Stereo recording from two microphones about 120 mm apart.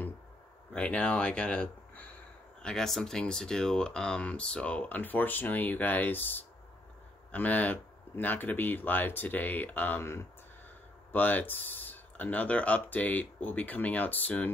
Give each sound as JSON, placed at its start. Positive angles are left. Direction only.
{"t": 0.7, "sound": "speech", "side_deg": 10}